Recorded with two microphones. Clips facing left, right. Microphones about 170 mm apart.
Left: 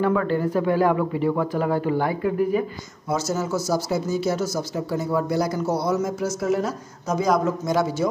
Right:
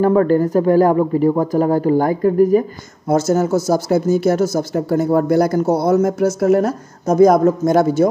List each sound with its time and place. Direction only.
0.0 s a man's voice: 40° right (ahead or behind)
3.1 s speech: 55° right (ahead or behind)